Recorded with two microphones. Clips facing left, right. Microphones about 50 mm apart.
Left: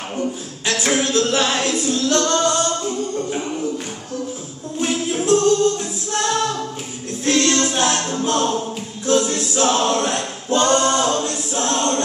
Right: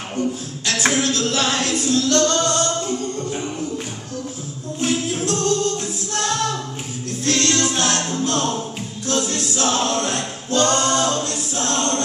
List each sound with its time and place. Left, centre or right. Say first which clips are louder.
0.2 s speech: right 2 dB; centre
0.9 s music: left 2 dB; left
1.9 s singing: right 2 dB; centre
4.7 s music: left 1 dB; centre
9.0 s a capella: left 5 dB; left